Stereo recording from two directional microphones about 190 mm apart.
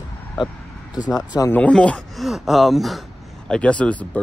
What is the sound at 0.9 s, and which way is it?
Speech, 20° left (ahead or behind).